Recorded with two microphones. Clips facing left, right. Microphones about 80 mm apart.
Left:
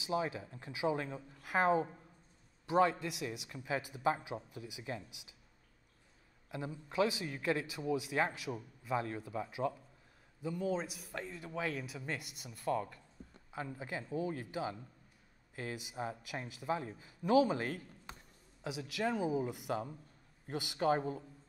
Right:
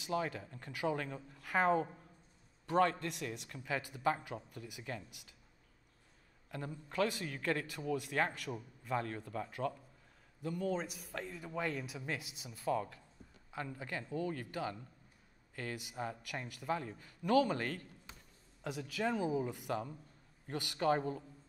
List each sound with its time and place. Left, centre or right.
0.0 s speech: centre
6.5 s speech: centre
13.7 s speech: centre